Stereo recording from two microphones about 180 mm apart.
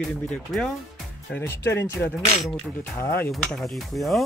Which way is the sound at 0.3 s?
5° left (ahead or behind).